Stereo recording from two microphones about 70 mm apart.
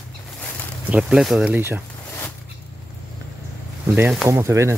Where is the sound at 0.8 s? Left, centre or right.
Centre.